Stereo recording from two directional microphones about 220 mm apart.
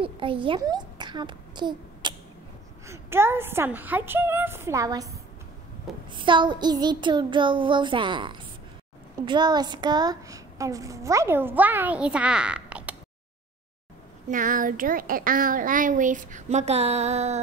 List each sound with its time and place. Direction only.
0.0 s a child's voice: 25° right (ahead or behind)
6.1 s child singing: 20° right (ahead or behind)
9.2 s speech: 20° right (ahead or behind)
14.3 s speech: 35° right (ahead or behind)